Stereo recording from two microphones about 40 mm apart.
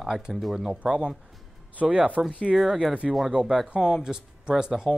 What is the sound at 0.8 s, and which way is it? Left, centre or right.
Speech, right.